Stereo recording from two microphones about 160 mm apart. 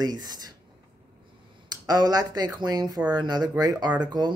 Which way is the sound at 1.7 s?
25° right (ahead or behind).